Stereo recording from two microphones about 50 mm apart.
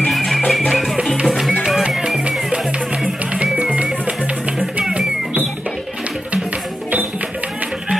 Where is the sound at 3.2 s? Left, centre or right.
Right.